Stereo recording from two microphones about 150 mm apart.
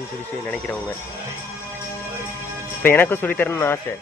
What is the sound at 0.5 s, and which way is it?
Speech, 10° left (ahead or behind).